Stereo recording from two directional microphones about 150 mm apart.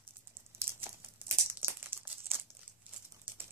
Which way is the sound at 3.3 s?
10° right (ahead or behind).